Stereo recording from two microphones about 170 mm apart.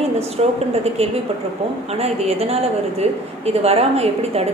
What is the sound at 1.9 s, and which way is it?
Speech, 40° right (ahead or behind).